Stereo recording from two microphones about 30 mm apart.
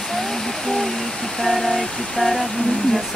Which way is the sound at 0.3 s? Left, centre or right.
Centre.